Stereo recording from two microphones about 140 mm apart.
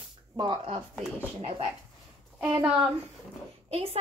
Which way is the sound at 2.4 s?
10° right (ahead or behind).